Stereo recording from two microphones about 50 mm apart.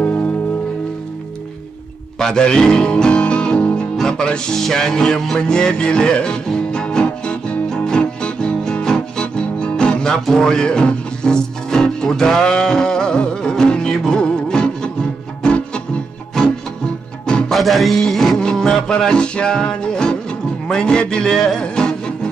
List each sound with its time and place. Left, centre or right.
0.0 s music: left
2.1 s music: centre
3.9 s music: centre
16.4 s music: centre